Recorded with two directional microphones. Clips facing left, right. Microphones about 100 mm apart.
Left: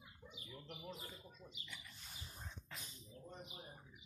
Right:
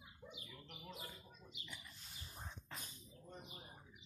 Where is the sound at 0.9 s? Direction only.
30° left (ahead or behind).